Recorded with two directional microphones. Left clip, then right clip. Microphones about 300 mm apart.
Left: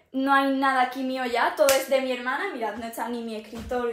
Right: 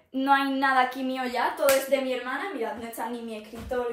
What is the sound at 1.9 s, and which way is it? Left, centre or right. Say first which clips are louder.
Speech: left 2 dB; left.